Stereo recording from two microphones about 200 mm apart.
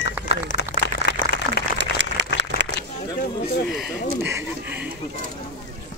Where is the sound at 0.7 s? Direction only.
40° left (ahead or behind).